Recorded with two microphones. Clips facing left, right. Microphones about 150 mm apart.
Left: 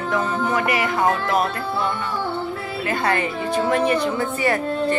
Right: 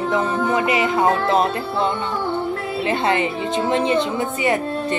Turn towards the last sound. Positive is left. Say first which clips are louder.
# right 1 dB
turn(degrees=-20)  # may be behind; listen again after turning